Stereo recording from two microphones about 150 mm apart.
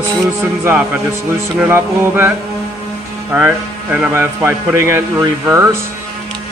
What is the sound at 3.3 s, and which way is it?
A man's voice, 10° right (ahead or behind).